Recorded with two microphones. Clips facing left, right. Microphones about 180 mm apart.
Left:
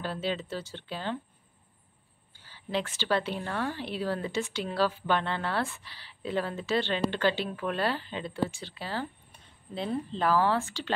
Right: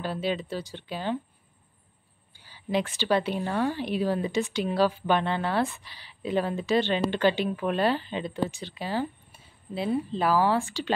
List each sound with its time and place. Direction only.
0.0 s speech: 15° right (ahead or behind)
2.3 s speech: 15° right (ahead or behind)